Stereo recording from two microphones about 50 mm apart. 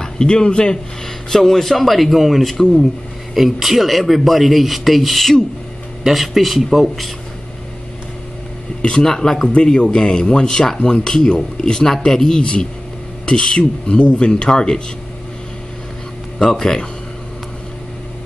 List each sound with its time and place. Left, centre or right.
0.0 s speech: centre
2.5 s speech: centre
3.3 s speech: centre
8.8 s speech: centre
9.5 s speech: left
16.3 s speech: centre